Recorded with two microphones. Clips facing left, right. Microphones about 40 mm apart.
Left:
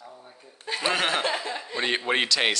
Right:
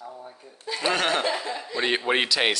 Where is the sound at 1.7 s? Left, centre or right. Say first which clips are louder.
Right 2 dB; centre.